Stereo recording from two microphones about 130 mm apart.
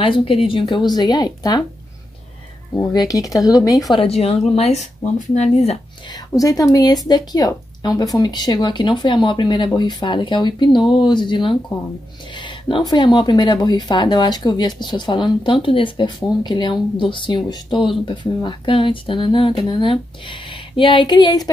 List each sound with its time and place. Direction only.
0.0 s speech: 45° left (ahead or behind)
2.7 s speech: 25° left (ahead or behind)
3.9 s speech: 50° left (ahead or behind)
6.4 s speech: 25° left (ahead or behind)